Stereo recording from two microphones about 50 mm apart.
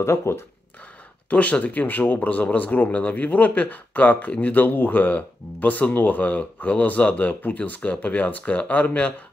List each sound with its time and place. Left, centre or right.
0.0 s speech: left
1.3 s speech: left